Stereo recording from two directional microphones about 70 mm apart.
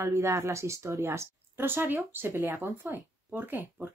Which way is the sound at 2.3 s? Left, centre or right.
Right.